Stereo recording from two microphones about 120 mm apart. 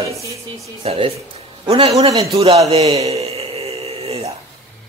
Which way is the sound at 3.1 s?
60° right (ahead or behind).